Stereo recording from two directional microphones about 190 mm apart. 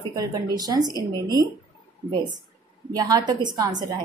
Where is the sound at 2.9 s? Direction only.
20° right (ahead or behind).